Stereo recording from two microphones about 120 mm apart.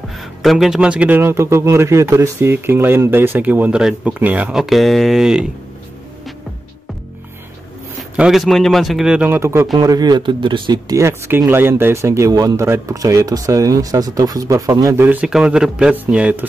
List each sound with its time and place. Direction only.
0.1 s speech: centre (ahead or behind)
8.2 s speech: centre (ahead or behind); by 9.7 s 20° right (ahead or behind)
9.8 s speech: 35° right (ahead or behind)
10.9 s speech: 20° right (ahead or behind)
15.0 s speech: 10° right (ahead or behind)